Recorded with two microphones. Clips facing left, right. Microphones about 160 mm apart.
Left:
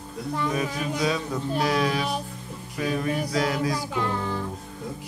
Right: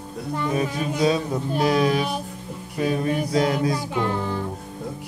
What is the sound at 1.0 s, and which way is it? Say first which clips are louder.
Music: right 6 dB; 25° right (ahead or behind).